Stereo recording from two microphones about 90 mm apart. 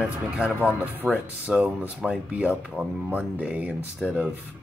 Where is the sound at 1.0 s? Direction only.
5° right (ahead or behind).